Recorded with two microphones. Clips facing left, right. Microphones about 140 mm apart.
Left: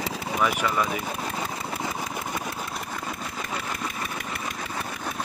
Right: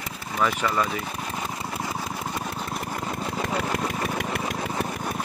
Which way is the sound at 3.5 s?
55° right (ahead or behind).